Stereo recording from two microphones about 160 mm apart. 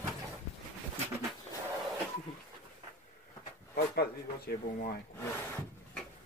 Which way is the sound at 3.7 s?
90° left.